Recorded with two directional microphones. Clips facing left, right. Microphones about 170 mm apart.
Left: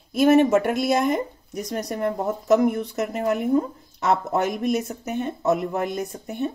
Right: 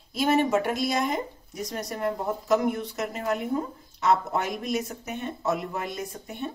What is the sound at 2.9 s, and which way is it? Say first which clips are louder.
Speech: left 5 dB; 50° left (ahead or behind).